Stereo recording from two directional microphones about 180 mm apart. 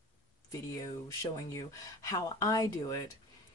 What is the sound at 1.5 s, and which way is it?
A woman's voice, 15° left (ahead or behind).